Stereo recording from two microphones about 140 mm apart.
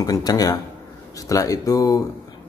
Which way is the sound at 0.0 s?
25° left (ahead or behind).